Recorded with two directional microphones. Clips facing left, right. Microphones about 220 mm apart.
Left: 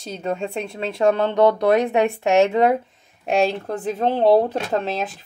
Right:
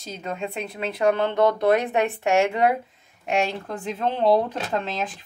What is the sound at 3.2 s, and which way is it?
A woman's voice, 35° left (ahead or behind).